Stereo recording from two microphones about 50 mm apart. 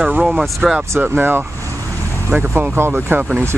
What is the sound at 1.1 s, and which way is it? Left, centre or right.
Speech, right.